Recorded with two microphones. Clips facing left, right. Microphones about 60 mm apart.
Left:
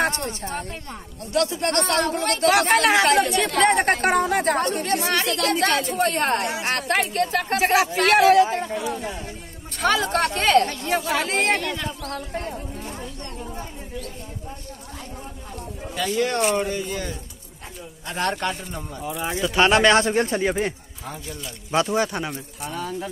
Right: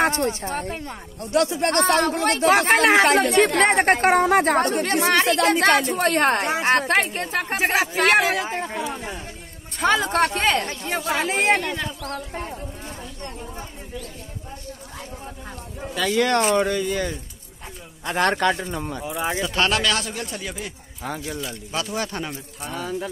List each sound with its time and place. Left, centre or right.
0.0 s a woman's voice: right
3.2 s a man's voice: right
7.2 s speech: centre
9.8 s speech: centre
16.1 s speech: right
18.0 s a man's voice: right
18.4 s speech: right
19.0 s speech: centre
19.6 s a man's voice: left
21.0 s speech: right
21.7 s speech: left
22.0 s speech: centre
22.3 s speech: centre